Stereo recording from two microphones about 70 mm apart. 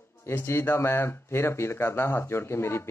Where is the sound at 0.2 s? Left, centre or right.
Left.